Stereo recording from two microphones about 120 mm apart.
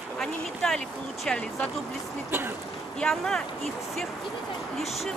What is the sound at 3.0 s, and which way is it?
Speech, 5° left (ahead or behind).